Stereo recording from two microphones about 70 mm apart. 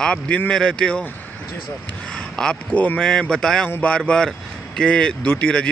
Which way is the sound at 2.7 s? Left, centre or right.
Left.